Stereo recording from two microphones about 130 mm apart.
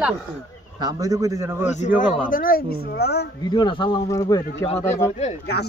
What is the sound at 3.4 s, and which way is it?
Speech, 35° left (ahead or behind).